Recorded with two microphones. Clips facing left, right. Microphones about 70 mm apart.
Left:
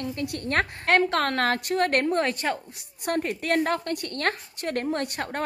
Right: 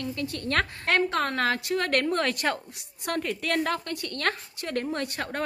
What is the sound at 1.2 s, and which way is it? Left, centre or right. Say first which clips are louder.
Speech: left 2 dB; left.